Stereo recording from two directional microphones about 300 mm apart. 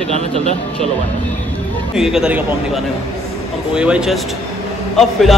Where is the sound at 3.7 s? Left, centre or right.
Centre.